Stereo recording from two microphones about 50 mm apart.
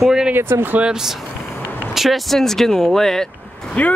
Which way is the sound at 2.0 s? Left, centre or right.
Centre.